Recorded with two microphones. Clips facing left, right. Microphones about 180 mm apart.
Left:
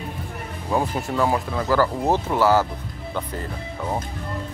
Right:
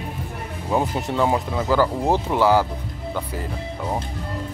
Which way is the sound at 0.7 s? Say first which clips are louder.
Right 1 dB; 15° right (ahead or behind).